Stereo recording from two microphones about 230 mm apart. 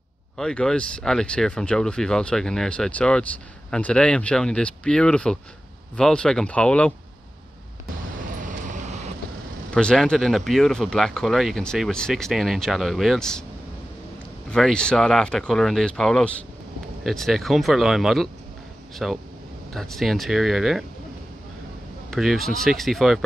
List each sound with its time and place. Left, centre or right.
0.4 s speech: centre
8.4 s vehicle: right
9.8 s speech: centre
14.5 s speech: centre
22.1 s speech: centre